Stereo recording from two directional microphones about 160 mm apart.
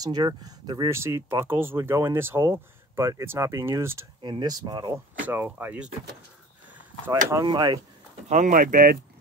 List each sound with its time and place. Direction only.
0.0 s speech: 25° right (ahead or behind)
4.2 s speech: 30° right (ahead or behind)
5.2 s speech: 10° right (ahead or behind)
7.4 s speech: 25° right (ahead or behind)
8.3 s speech: 50° right (ahead or behind)